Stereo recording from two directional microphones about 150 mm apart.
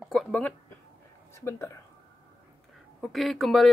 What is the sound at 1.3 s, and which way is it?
Speech, 15° left (ahead or behind).